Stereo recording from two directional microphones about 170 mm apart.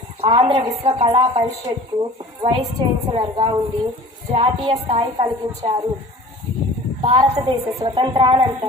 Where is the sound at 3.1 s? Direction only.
25° right (ahead or behind).